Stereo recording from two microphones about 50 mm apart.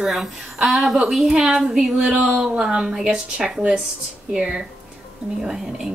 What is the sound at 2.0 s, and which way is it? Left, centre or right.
Speech, right.